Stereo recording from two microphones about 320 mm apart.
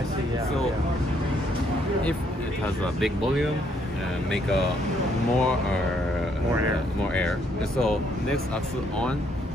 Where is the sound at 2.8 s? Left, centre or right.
Centre.